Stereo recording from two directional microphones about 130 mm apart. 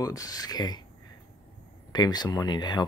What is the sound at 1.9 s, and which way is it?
Speech, 30° left (ahead or behind).